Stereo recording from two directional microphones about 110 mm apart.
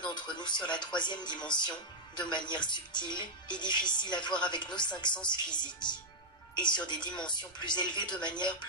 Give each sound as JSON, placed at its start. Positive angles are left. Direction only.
{"t": 0.0, "sound": "speech", "side_deg": 40}